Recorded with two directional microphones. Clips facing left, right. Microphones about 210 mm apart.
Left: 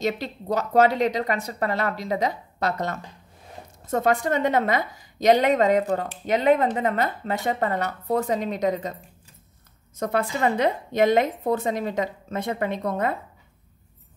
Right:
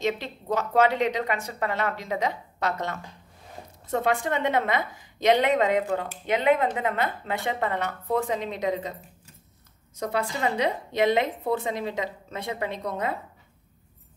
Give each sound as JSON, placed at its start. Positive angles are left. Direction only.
{"t": 0.0, "sound": "a woman's voice", "side_deg": 40}
{"t": 9.9, "sound": "a woman's voice", "side_deg": 50}